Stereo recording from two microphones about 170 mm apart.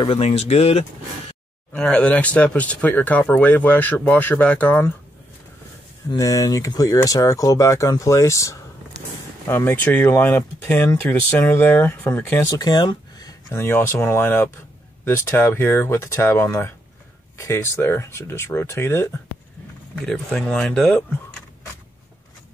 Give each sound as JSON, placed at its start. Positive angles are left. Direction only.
{"t": 0.0, "sound": "speech", "side_deg": 35}
{"t": 1.7, "sound": "speech", "side_deg": 5}
{"t": 6.0, "sound": "speech", "side_deg": 20}
{"t": 20.1, "sound": "speech", "side_deg": 5}